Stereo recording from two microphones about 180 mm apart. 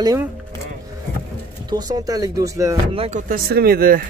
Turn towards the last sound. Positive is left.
turn(degrees=-55)  # may be behind; listen again after turning